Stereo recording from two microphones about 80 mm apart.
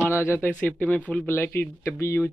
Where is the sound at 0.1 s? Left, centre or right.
Left.